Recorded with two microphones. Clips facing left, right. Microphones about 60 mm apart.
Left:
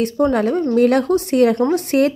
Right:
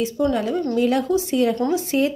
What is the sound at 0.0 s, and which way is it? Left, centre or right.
A woman's voice, left.